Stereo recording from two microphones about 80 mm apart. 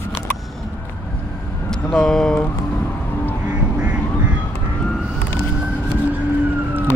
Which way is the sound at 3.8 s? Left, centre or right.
Centre.